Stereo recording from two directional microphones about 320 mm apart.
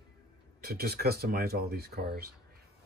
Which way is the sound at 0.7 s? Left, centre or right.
Right.